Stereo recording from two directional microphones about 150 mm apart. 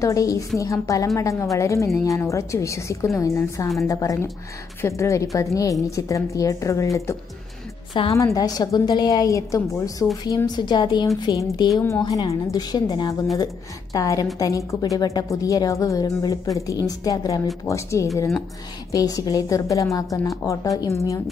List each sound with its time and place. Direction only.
0.0 s a woman's voice: 20° left (ahead or behind)